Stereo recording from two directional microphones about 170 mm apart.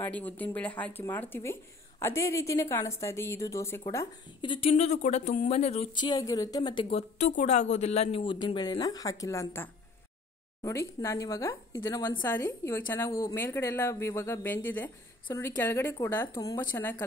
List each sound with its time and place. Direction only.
0.0 s speech: 10° left (ahead or behind)
4.5 s speech: 35° left (ahead or behind)
5.9 s a woman's voice: 25° left (ahead or behind)